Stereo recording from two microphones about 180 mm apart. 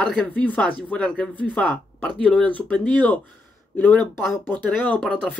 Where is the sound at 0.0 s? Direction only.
5° left (ahead or behind).